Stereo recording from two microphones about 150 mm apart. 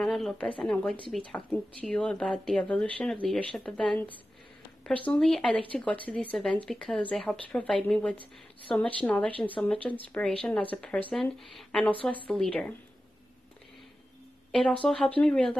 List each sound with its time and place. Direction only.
0.0 s speech: 5° left (ahead or behind)
14.5 s speech: 5° left (ahead or behind)